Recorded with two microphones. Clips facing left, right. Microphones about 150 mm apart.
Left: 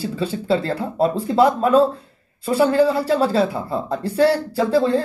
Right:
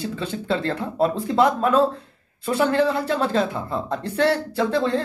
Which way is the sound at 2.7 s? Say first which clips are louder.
Left 4 dB; 30° left (ahead or behind).